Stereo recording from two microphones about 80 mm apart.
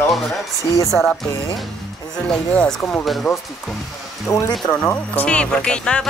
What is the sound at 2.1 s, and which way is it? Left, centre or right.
Music, centre.